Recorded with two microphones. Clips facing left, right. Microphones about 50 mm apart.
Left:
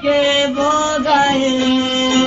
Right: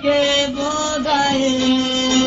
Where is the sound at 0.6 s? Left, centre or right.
Left.